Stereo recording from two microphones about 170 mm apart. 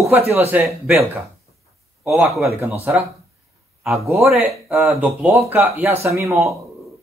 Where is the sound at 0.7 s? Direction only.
15° right (ahead or behind).